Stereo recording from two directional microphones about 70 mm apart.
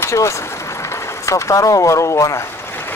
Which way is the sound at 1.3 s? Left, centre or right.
Left.